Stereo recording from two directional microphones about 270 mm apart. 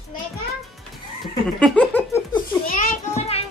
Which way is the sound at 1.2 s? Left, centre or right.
Centre.